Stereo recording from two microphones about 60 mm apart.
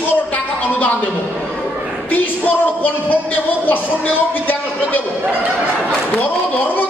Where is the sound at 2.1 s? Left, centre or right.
Left.